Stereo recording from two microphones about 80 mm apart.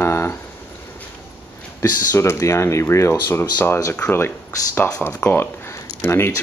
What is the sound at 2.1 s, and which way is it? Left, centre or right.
Speech, left.